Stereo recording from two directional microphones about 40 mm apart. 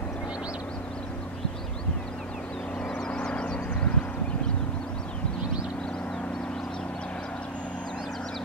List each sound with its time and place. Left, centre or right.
2.9 s vehicle: left